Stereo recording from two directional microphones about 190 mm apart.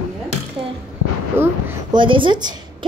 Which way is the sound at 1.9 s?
25° right (ahead or behind).